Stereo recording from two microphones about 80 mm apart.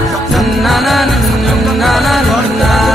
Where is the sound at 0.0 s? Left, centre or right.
Centre.